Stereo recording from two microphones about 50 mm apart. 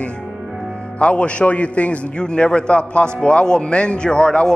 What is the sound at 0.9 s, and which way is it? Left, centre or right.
A man's voice, left.